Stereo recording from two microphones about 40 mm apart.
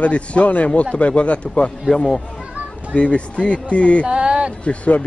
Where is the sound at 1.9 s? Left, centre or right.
Centre.